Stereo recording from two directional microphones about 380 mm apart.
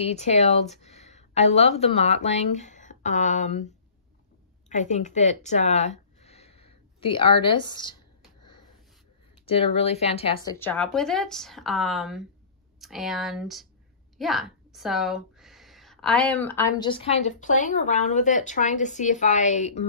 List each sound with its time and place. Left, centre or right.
0.0 s a woman's voice: centre
4.6 s a sound: centre
9.5 s a woman's voice: centre